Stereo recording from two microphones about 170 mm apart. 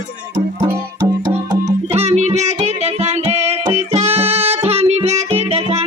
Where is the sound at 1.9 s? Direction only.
40° right (ahead or behind).